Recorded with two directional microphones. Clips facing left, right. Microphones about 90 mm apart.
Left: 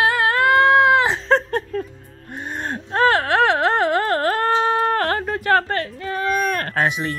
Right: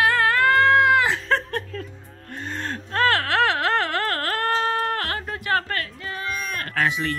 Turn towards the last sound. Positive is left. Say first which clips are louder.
# left 2 dB
turn(degrees=20)  # may be behind; listen again after turning